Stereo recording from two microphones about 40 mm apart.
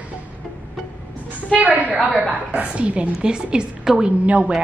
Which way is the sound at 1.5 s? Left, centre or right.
Right.